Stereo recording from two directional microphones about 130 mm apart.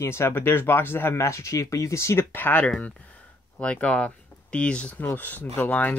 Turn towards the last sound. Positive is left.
turn(degrees=15)  # may be behind; listen again after turning